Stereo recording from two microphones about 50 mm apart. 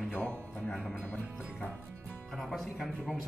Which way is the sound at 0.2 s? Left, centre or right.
Left.